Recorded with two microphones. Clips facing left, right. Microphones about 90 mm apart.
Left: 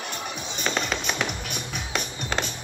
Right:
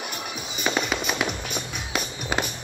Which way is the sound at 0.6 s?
5° right (ahead or behind).